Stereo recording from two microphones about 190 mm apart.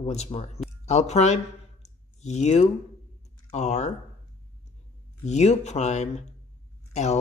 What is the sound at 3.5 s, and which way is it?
Speech, 35° left (ahead or behind).